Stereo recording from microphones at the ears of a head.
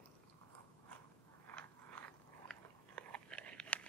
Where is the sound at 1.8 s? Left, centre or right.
Right.